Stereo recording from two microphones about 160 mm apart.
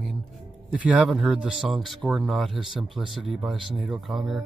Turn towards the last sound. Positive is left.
turn(degrees=0)  # may be behind; listen again after turning